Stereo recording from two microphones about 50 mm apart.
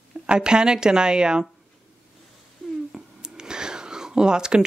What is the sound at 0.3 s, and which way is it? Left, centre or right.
A woman's voice, centre.